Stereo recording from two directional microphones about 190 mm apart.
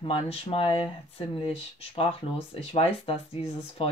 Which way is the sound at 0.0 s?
30° left (ahead or behind).